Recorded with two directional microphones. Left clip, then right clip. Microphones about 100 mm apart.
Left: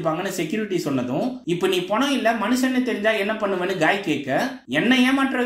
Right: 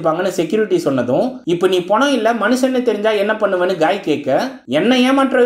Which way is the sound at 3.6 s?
35° right (ahead or behind).